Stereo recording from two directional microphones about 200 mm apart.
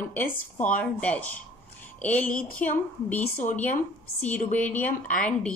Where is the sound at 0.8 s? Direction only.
5° left (ahead or behind).